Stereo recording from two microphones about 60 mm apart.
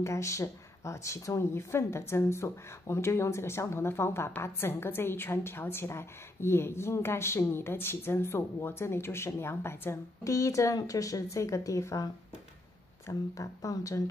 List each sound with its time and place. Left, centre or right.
0.0 s a woman's voice: left
10.2 s a woman's voice: left